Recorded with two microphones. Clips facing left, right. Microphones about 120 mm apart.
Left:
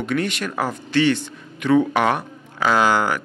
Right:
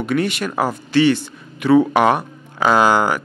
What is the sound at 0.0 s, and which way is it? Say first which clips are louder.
Speech: right 3 dB; 10° right (ahead or behind).